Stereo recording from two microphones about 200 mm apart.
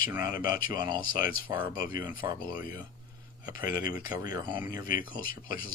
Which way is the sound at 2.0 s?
25° right (ahead or behind).